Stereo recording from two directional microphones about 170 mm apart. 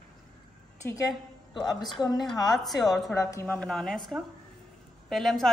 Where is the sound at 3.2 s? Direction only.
15° left (ahead or behind).